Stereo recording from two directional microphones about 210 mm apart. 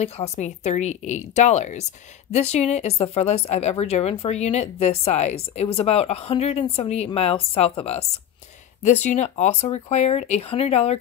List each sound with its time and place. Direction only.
0.0 s speech: 30° left (ahead or behind)